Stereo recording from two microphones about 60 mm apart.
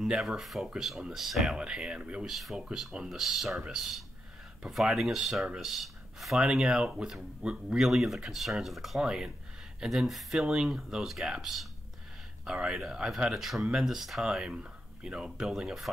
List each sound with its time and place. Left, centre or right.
0.0 s speech: centre
2.2 s speech: centre
6.4 s speech: centre
12.4 s speech: centre
14.2 s speech: centre